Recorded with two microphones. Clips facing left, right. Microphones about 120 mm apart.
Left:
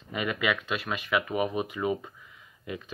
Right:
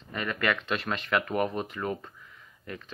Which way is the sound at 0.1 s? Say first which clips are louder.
Left 1 dB; 10° left (ahead or behind).